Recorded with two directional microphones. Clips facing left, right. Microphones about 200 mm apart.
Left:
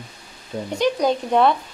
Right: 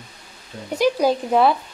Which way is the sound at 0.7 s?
5° right (ahead or behind).